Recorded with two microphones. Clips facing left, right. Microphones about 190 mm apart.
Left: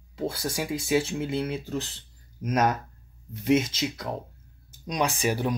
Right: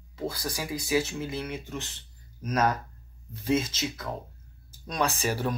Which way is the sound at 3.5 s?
25° left (ahead or behind).